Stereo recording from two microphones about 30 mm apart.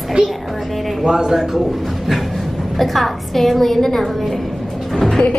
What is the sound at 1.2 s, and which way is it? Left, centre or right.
A man's voice, centre.